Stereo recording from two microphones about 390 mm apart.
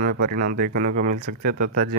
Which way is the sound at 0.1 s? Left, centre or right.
Right.